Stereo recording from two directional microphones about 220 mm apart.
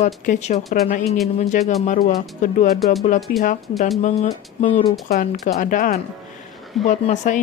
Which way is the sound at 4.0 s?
30° left (ahead or behind).